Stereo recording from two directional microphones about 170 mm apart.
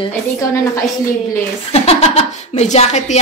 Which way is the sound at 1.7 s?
35° left (ahead or behind).